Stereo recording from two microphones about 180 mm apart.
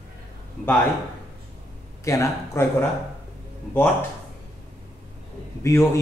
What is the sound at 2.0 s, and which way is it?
Speech, 15° left (ahead or behind).